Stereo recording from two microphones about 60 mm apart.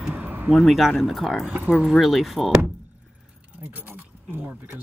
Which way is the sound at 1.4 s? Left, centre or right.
Right.